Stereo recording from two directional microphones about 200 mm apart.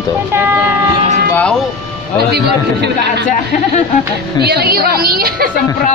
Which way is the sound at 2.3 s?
55° right (ahead or behind).